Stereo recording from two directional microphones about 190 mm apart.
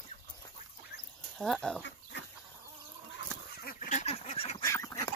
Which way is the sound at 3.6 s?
45° left (ahead or behind).